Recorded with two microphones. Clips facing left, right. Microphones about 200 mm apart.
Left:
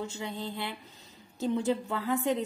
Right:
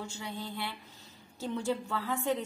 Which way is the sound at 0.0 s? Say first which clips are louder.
Left 4 dB; 20° left (ahead or behind).